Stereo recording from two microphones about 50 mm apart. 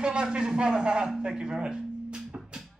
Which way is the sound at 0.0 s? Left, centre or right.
Centre.